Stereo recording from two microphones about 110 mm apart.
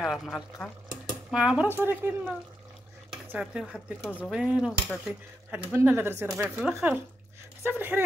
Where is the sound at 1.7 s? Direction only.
20° right (ahead or behind).